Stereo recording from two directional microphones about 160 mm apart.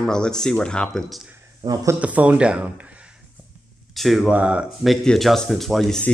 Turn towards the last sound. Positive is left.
turn(degrees=5)  # may be behind; listen again after turning